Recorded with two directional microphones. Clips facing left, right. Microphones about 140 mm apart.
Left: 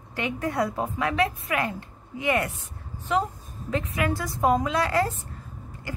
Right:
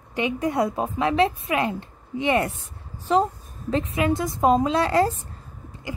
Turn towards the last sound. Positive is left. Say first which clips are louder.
# right 2 dB
turn(degrees=-20)  # may be behind; listen again after turning